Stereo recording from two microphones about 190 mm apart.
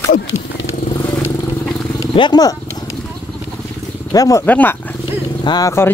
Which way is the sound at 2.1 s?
25° left (ahead or behind).